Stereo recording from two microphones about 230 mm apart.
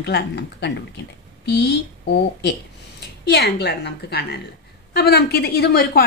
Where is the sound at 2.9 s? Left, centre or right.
Left.